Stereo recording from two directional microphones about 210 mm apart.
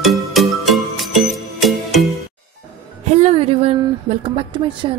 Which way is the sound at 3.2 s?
30° right (ahead or behind).